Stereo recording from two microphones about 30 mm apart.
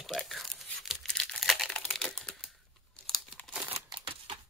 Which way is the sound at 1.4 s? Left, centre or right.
Centre.